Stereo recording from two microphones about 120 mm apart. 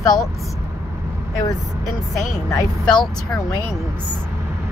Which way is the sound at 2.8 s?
5° left (ahead or behind).